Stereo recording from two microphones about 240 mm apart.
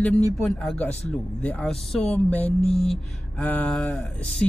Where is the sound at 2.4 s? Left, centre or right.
Left.